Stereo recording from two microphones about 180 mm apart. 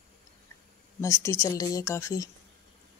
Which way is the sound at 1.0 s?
15° left (ahead or behind).